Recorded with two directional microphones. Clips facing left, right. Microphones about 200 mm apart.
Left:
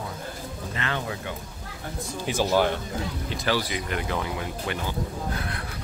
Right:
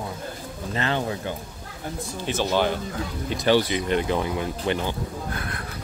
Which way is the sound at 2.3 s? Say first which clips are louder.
Even; 5° left (ahead or behind).